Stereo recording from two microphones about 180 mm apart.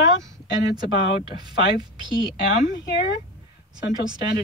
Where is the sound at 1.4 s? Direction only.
25° right (ahead or behind).